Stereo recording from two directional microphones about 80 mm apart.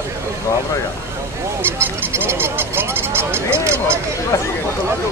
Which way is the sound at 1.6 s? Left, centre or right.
Right.